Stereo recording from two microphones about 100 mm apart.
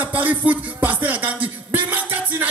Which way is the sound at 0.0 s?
20° right (ahead or behind).